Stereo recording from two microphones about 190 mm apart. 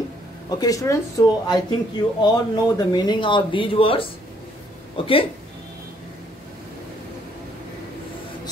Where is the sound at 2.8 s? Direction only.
20° left (ahead or behind).